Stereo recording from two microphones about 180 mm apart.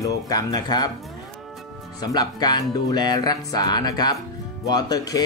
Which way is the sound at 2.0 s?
20° left (ahead or behind).